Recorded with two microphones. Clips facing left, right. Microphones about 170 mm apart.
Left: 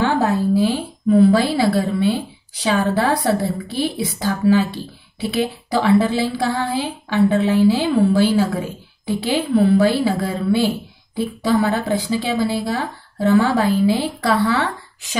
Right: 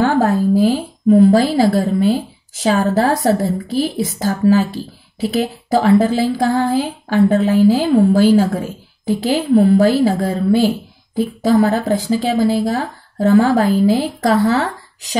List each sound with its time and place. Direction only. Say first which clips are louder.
1.0 s speech: right 3 dB; 45° right (ahead or behind)